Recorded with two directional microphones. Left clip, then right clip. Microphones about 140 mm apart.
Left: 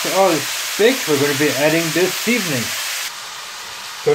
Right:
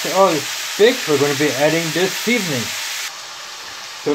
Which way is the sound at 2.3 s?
10° right (ahead or behind).